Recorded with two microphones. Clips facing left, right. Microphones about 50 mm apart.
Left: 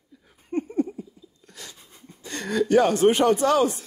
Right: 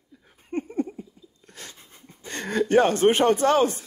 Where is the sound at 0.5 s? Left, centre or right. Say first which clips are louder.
Left 2 dB; right.